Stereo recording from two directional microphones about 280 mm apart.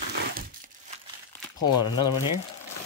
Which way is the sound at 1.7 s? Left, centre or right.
Centre.